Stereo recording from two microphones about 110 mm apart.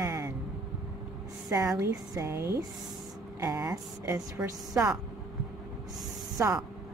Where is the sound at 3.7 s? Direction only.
30° right (ahead or behind).